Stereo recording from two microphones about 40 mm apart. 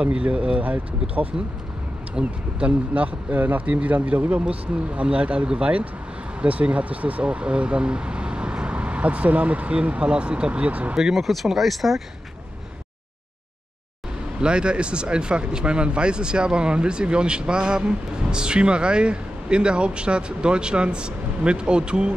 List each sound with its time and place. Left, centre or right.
0.0 s speech: right
2.2 s speech: right
2.9 s speech: right
3.3 s speech: right
3.6 s speech: right
11.1 s speech: centre
14.4 s speech: right